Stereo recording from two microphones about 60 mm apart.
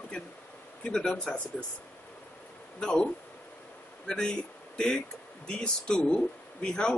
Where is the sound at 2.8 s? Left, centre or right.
Centre.